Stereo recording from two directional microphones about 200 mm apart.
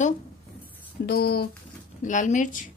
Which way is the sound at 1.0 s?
50° left (ahead or behind).